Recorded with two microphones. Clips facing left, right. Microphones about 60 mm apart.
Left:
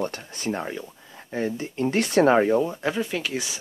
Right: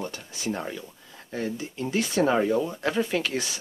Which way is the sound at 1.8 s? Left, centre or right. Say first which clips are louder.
Left 5 dB; left.